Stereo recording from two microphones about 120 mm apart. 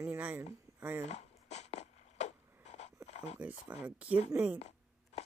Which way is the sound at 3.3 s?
10° right (ahead or behind).